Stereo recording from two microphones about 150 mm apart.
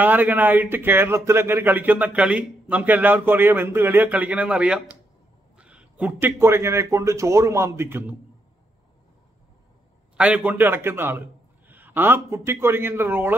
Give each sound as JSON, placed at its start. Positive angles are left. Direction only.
{"t": 0.0, "sound": "speech", "side_deg": -10}
{"t": 10.1, "sound": "a man's voice", "side_deg": -5}